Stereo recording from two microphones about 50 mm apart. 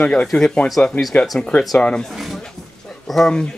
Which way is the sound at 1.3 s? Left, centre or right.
Left.